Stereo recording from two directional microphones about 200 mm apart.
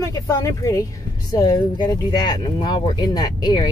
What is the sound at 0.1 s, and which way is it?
Speech, 15° left (ahead or behind).